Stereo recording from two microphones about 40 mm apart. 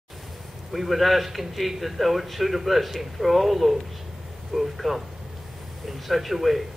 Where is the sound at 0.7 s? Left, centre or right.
Centre.